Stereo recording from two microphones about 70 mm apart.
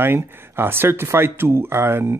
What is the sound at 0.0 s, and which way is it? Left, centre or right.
Speech, right.